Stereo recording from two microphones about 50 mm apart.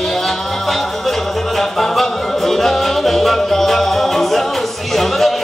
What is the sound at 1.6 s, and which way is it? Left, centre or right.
Music, centre.